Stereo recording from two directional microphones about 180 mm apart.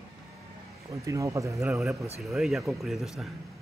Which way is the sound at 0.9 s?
15° right (ahead or behind).